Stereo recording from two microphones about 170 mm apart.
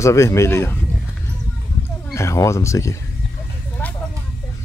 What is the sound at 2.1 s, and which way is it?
Speech, 15° left (ahead or behind).